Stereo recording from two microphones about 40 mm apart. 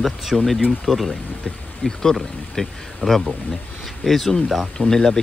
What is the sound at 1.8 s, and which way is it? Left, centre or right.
Speech, left.